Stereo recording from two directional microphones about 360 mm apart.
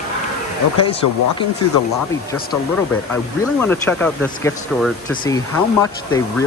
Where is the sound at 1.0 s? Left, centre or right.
Left.